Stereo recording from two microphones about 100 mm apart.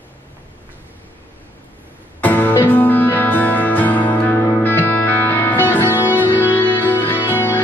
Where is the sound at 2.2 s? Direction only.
15° left (ahead or behind).